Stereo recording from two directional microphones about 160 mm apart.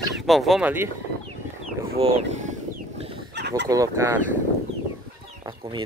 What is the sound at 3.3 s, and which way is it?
Fowl, 90° right.